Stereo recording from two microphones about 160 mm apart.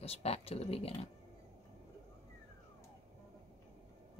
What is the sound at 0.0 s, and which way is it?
Speech, 40° left (ahead or behind).